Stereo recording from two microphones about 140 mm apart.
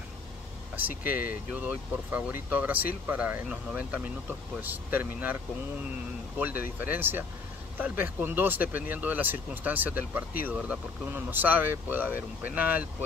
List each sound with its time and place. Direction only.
0.7 s speech: 10° right (ahead or behind)
6.8 s speech: 15° right (ahead or behind)